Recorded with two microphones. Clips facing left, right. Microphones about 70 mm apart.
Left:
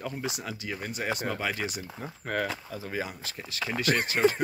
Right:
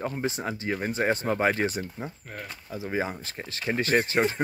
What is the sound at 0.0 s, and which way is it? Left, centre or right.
Speech, right.